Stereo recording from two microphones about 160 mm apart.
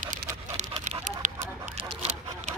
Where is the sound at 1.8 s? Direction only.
40° right (ahead or behind).